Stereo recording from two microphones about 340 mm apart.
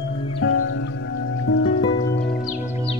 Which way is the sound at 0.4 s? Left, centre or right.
Left.